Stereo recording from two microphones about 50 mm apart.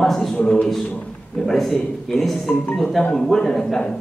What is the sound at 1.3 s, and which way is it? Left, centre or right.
A man's voice, centre.